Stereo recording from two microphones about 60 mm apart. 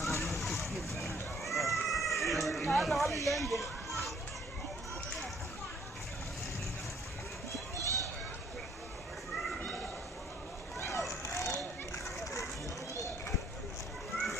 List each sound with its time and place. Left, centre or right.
0.0 s a sound: left
0.3 s a sound: centre
1.4 s cat: centre
3.3 s speech: centre
7.7 s children playing: right
11.1 s children playing: left